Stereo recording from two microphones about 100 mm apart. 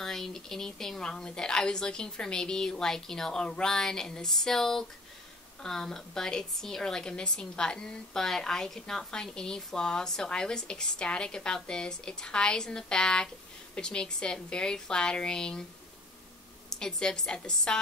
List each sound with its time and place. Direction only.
0.0 s a woman's voice: 5° left (ahead or behind)
16.7 s a woman's voice: 5° left (ahead or behind)